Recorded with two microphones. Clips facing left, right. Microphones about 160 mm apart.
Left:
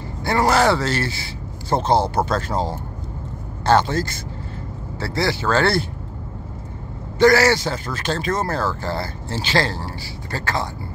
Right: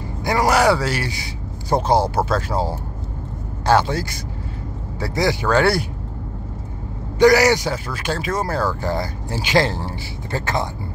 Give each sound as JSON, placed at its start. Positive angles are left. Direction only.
{"t": 0.2, "sound": "a man's voice", "side_deg": -10}
{"t": 7.2, "sound": "speech", "side_deg": -15}